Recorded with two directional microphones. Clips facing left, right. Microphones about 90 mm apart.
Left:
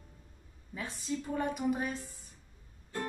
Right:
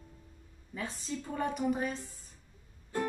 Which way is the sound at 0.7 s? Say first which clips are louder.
Left 1 dB; 5° left (ahead or behind).